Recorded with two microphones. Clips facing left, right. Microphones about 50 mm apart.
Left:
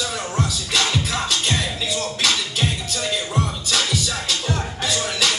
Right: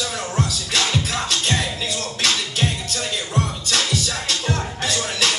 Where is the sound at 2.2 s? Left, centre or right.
Right.